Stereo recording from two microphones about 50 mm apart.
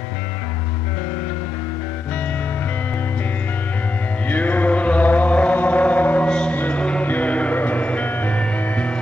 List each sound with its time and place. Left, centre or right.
4.3 s chant: left
6.2 s music: centre
6.5 s music: left
6.8 s music: left